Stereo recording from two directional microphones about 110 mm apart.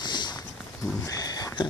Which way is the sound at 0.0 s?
45° left (ahead or behind).